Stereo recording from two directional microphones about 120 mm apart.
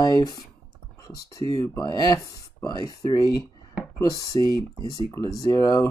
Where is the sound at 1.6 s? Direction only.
30° left (ahead or behind).